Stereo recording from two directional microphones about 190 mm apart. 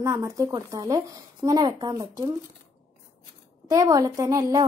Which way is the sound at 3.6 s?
15° right (ahead or behind).